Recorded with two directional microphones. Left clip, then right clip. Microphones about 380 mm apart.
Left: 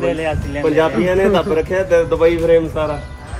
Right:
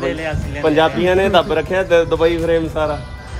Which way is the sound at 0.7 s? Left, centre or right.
Centre.